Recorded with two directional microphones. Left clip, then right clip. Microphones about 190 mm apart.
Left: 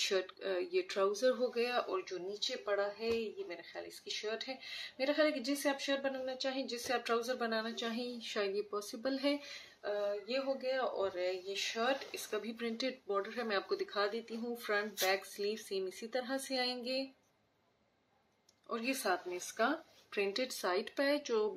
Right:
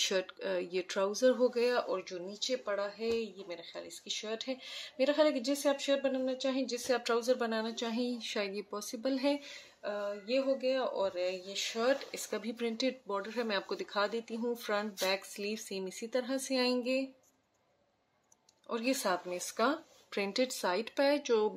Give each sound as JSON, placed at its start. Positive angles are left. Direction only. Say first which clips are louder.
{"t": 0.0, "sound": "speech", "louder": "right 2 dB", "side_deg": -40}
{"t": 18.7, "sound": "speech", "louder": "right 3 dB", "side_deg": -45}